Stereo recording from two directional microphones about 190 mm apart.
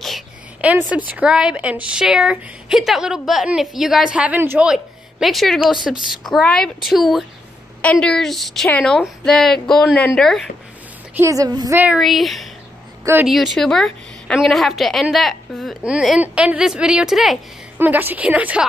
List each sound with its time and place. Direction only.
0.0 s a woman's voice: 5° right (ahead or behind)
11.1 s speech: 15° right (ahead or behind)
11.8 s a woman's voice: centre (ahead or behind)
13.0 s speech: 10° right (ahead or behind)
13.3 s a woman's voice: centre (ahead or behind)